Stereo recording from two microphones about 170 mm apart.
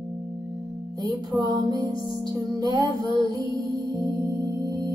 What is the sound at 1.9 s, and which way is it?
Music, 30° left (ahead or behind).